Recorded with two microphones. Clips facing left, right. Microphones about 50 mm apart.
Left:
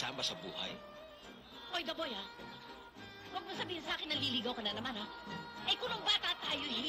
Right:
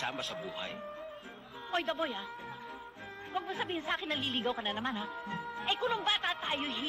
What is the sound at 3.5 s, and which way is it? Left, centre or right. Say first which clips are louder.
A woman's voice: right 5 dB; right.